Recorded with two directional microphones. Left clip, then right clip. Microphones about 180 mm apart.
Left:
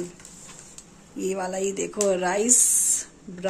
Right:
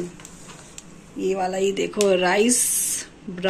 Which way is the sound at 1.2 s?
15° left (ahead or behind).